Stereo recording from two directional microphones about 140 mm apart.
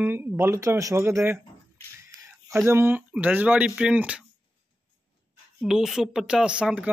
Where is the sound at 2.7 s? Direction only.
15° right (ahead or behind).